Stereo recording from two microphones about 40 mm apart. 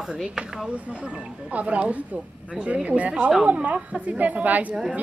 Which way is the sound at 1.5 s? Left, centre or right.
Right.